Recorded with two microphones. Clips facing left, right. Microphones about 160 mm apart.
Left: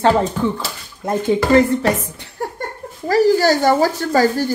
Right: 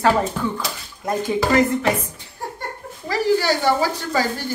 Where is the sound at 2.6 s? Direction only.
45° left (ahead or behind).